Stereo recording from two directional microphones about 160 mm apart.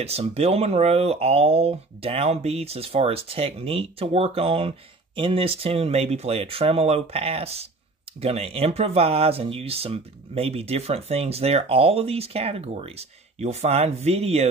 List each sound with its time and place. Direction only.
0.0 s speech: 40° right (ahead or behind)